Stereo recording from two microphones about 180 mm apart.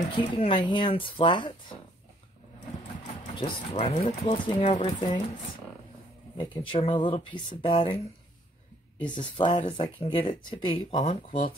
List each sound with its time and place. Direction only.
0.1 s speech: 25° left (ahead or behind)
3.3 s speech: 30° left (ahead or behind)
6.3 s speech: 25° left (ahead or behind)